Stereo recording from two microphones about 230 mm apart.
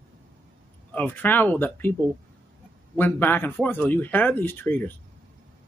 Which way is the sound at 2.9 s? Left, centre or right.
Centre.